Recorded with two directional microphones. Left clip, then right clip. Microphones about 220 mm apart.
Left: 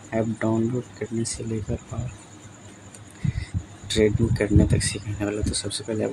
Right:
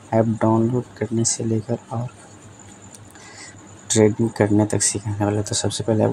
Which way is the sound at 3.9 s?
15° right (ahead or behind).